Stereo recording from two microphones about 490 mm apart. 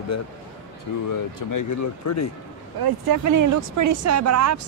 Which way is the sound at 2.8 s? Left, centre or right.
Right.